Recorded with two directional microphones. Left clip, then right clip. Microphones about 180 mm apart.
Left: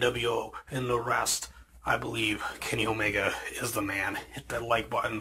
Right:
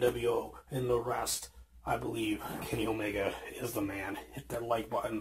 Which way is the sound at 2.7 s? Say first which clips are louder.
Left 5 dB; centre (ahead or behind).